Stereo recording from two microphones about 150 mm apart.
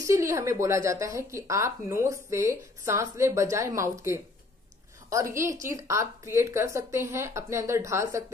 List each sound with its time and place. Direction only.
0.0 s speech: 20° right (ahead or behind)